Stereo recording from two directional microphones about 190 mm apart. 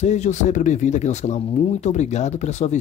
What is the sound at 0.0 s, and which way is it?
Speech, 40° left (ahead or behind).